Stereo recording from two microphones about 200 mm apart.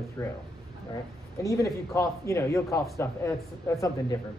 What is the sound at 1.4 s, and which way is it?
Speech, 15° left (ahead or behind).